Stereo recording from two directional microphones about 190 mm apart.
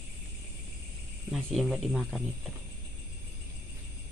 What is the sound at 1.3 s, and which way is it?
Speech, centre (ahead or behind).